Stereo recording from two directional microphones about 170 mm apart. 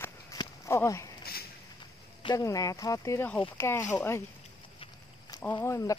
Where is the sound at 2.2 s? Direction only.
25° left (ahead or behind).